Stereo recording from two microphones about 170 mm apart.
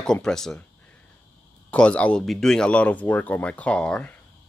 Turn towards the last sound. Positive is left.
turn(degrees=5)  # may be behind; listen again after turning